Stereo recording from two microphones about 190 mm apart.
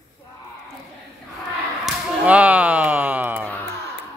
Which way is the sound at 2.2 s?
5° right (ahead or behind).